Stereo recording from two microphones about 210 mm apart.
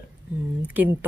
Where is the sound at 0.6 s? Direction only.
10° right (ahead or behind).